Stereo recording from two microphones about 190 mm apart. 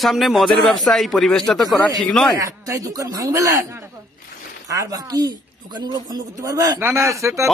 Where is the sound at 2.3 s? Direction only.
15° right (ahead or behind).